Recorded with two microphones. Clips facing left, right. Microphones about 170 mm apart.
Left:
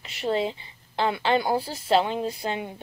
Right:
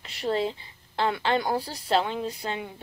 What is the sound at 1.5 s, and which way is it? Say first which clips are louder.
A woman's voice: left 3 dB; 25° left (ahead or behind).